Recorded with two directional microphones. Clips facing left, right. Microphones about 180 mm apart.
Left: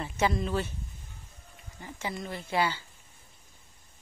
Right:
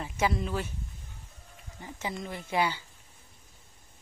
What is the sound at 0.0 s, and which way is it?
Speech, 10° right (ahead or behind).